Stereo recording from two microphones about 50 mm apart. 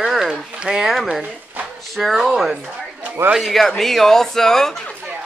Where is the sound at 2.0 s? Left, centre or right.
Centre.